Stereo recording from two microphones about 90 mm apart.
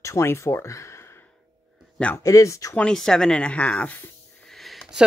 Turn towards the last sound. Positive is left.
turn(degrees=0)  # may be behind; listen again after turning